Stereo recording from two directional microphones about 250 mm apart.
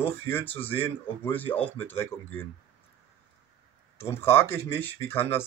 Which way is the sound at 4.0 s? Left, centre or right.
Centre.